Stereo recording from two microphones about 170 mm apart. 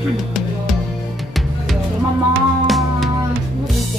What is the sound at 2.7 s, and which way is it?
Music, centre (ahead or behind).